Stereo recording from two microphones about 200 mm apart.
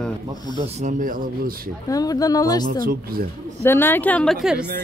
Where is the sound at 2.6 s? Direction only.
45° right (ahead or behind).